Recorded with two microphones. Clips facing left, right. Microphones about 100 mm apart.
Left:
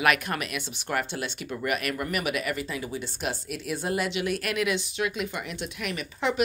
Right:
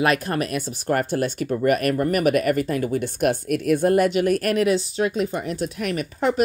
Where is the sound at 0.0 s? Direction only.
35° right (ahead or behind).